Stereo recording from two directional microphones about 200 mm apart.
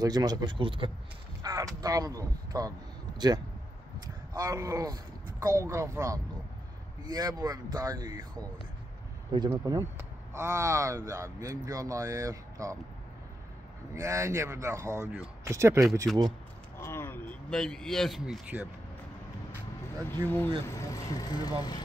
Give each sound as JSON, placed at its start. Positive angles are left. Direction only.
{"t": 0.0, "sound": "speech", "side_deg": -20}
{"t": 4.3, "sound": "speech", "side_deg": -15}
{"t": 9.3, "sound": "speech", "side_deg": -20}
{"t": 13.9, "sound": "speech", "side_deg": -15}
{"t": 16.7, "sound": "speech", "side_deg": 10}
{"t": 20.2, "sound": "speech", "side_deg": 10}